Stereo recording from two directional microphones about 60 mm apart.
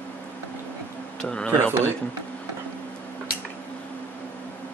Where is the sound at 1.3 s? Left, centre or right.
Centre.